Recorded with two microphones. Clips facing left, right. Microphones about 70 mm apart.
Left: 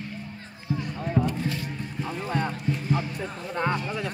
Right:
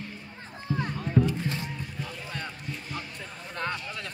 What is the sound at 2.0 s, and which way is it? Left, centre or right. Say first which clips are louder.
Music: left 11 dB; left.